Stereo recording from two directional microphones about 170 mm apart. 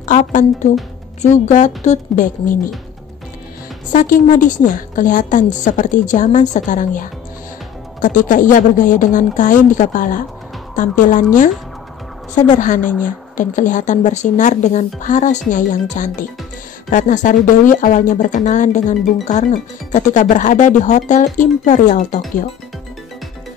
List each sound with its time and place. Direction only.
0.0 s a woman's voice: 45° left (ahead or behind)
3.9 s a woman's voice: 50° left (ahead or behind)
12.5 s a woman's voice: 50° left (ahead or behind)